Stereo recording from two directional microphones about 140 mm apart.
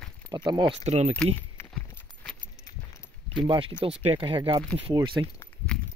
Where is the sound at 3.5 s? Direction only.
35° right (ahead or behind).